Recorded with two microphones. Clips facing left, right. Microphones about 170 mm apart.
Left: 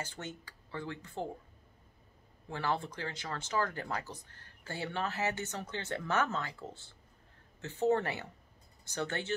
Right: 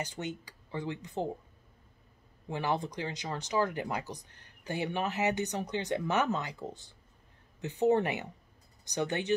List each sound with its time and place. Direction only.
0.0 s speech: 15° right (ahead or behind)
2.5 s speech: 15° right (ahead or behind)